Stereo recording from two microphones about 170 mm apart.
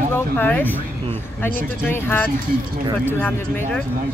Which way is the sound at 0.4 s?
10° left (ahead or behind).